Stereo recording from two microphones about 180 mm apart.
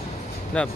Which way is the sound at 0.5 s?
5° left (ahead or behind).